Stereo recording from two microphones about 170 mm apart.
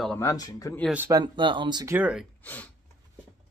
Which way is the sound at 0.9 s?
15° right (ahead or behind).